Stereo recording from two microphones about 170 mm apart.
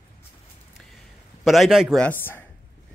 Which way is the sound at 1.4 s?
Centre (ahead or behind).